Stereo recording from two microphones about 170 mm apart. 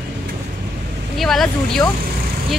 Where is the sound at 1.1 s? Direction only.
Centre (ahead or behind).